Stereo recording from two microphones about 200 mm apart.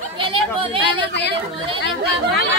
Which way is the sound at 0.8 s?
60° left (ahead or behind).